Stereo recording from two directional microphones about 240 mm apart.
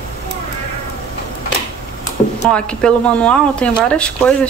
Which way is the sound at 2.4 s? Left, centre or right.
Centre.